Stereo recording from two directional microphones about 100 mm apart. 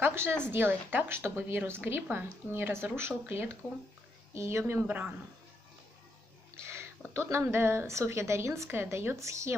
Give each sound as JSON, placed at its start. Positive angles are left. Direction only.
{"t": 0.0, "sound": "a sound", "side_deg": -25}
{"t": 0.5, "sound": "speech", "side_deg": -20}
{"t": 6.5, "sound": "speech", "side_deg": -25}